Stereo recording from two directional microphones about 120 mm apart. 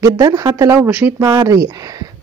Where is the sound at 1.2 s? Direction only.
30° right (ahead or behind).